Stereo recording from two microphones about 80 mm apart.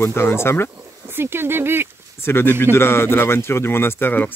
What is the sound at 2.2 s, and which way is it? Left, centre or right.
Speech, left.